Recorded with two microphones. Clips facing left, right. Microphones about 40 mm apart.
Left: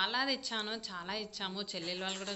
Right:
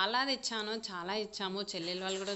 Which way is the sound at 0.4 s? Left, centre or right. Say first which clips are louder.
Right 1 dB; centre.